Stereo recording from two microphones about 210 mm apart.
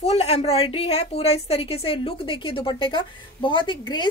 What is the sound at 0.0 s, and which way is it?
A woman's voice, 30° left (ahead or behind).